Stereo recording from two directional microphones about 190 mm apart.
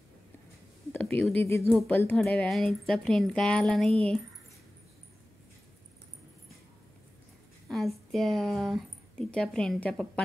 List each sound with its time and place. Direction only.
0.9 s a sound: 5° left (ahead or behind)
1.4 s a woman's voice: 15° left (ahead or behind)
7.6 s speech: centre (ahead or behind)